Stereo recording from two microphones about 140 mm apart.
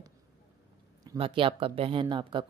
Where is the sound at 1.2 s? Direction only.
40° right (ahead or behind).